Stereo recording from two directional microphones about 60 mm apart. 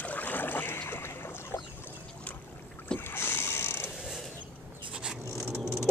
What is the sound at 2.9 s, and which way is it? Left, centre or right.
Boat, left.